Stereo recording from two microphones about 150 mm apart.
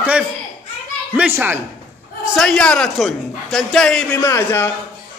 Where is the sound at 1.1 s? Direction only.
10° right (ahead or behind).